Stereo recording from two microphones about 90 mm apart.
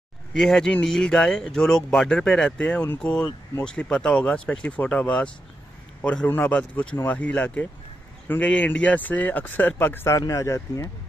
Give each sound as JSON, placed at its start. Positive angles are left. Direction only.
{"t": 0.3, "sound": "speech", "side_deg": 5}
{"t": 10.1, "sound": "speech", "side_deg": 35}